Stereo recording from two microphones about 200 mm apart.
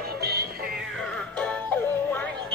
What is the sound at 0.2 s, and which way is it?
Music, 55° right (ahead or behind).